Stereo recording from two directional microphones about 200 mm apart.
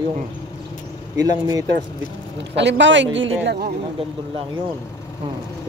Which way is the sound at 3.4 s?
55° right (ahead or behind).